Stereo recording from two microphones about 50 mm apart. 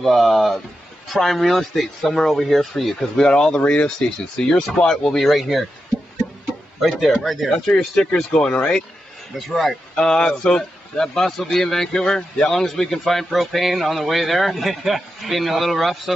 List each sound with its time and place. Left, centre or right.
0.0 s a man's voice: centre
3.2 s a man's voice: centre
6.2 s a sound: centre
6.8 s a man's voice: centre
7.5 s speech: centre
9.5 s a man's voice: centre
9.9 s a man's voice: centre